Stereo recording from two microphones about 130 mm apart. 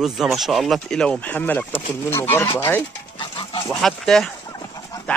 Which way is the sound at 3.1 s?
40° left (ahead or behind).